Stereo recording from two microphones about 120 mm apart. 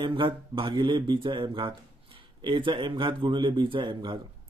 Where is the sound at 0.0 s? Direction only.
45° right (ahead or behind).